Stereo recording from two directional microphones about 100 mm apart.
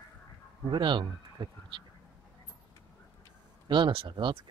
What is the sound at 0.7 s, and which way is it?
Speech, 50° right (ahead or behind).